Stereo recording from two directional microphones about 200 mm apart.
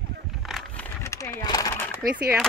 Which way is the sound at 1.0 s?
15° left (ahead or behind).